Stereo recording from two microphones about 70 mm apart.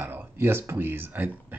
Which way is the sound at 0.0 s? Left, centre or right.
Right.